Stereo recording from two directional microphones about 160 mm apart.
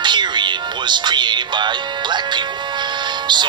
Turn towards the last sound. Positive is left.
turn(degrees=-30)  # may be behind; listen again after turning